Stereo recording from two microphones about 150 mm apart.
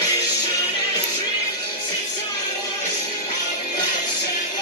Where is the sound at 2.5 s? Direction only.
30° left (ahead or behind).